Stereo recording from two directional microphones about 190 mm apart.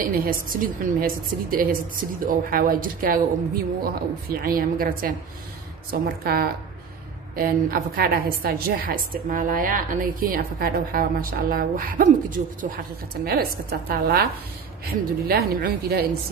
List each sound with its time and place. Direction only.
0.0 s a woman's voice: 50° right (ahead or behind)